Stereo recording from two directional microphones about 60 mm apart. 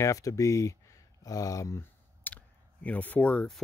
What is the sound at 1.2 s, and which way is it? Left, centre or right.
Speech, left.